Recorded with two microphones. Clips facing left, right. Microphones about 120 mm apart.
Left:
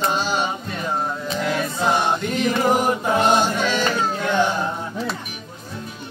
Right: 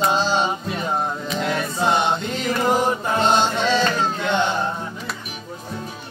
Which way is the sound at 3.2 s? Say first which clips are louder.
Right 1 dB; 25° right (ahead or behind).